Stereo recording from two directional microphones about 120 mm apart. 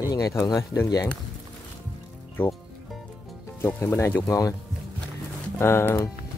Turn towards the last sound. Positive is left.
turn(degrees=20)  # may be behind; listen again after turning